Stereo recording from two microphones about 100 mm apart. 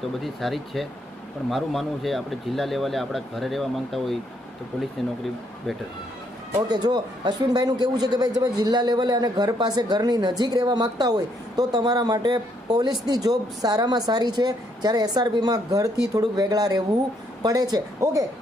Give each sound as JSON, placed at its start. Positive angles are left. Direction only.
{"t": 0.2, "sound": "speech", "side_deg": 0}
{"t": 6.7, "sound": "a man's voice", "side_deg": -45}